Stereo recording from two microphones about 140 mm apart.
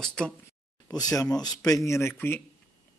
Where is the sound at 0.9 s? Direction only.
25° left (ahead or behind).